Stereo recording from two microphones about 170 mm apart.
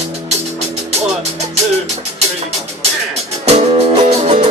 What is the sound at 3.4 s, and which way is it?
Music, 40° right (ahead or behind).